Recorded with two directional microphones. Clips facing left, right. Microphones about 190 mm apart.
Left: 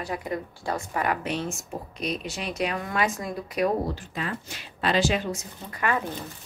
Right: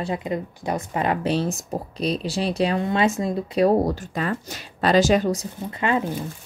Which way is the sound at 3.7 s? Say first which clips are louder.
Right 7 dB; 45° right (ahead or behind).